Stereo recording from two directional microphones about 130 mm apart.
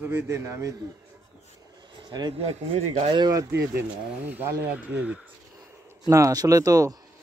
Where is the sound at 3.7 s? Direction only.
15° right (ahead or behind).